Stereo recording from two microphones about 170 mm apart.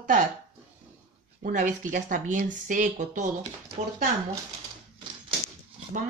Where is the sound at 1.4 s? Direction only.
50° right (ahead or behind).